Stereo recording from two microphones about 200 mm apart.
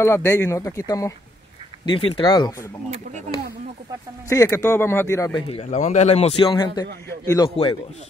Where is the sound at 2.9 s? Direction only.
35° right (ahead or behind).